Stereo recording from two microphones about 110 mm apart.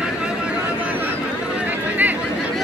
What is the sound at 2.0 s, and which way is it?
Chatter, 15° right (ahead or behind).